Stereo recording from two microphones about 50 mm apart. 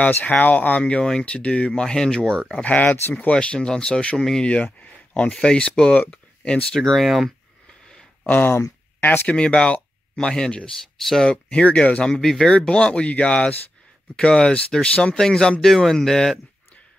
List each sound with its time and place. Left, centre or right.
0.2 s speech: left
1.7 s speech: centre
2.6 s speech: left
3.3 s speech: left
3.5 s speech: centre
4.2 s speech: centre
4.7 s speech: left
6.7 s speech: centre
7.9 s a sound: centre
8.3 s speech: left
9.3 s speech: centre
11.6 s speech: left
12.0 s speech: centre